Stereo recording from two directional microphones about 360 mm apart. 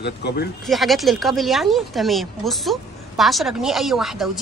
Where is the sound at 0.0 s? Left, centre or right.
Left.